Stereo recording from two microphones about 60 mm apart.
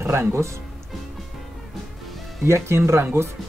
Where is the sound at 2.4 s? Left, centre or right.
Right.